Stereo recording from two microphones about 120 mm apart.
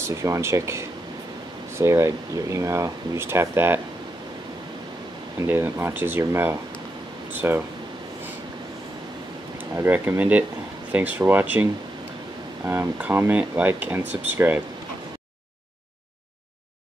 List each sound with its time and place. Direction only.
0.0 s speech: 25° right (ahead or behind)
5.4 s speech: 20° right (ahead or behind)
9.8 s speech: 15° right (ahead or behind)
12.6 s speech: 15° right (ahead or behind)